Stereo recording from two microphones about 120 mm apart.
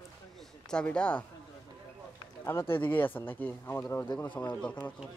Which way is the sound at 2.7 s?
15° left (ahead or behind).